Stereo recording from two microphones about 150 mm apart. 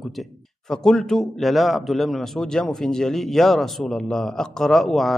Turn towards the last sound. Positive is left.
turn(degrees=0)  # may be behind; listen again after turning